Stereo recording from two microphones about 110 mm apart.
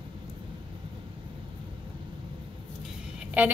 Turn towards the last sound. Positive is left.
turn(degrees=-10)  # may be behind; listen again after turning